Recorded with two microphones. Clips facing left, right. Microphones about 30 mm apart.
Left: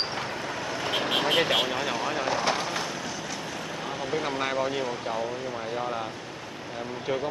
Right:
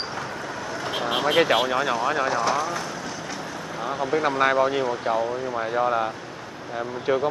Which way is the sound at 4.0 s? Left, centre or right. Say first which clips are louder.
Right 6 dB; centre.